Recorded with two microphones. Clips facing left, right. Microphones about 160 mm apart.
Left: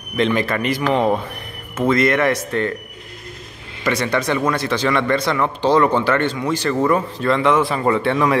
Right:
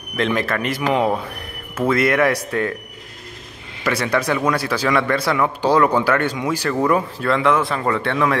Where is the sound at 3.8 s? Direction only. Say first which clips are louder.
Even; 5° right (ahead or behind).